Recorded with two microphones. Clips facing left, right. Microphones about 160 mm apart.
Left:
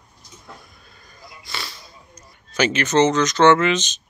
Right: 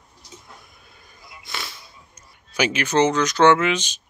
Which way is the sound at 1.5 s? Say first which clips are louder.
Even; centre (ahead or behind).